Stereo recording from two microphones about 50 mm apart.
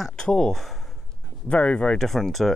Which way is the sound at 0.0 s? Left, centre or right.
Centre.